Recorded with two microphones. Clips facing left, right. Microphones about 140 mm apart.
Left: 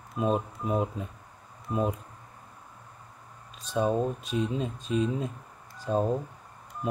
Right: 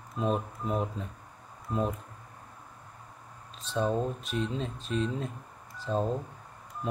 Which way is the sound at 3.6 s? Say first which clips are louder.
Left 3 dB; 10° left (ahead or behind).